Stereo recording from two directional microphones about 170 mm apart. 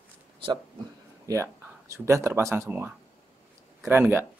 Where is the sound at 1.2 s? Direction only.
15° right (ahead or behind).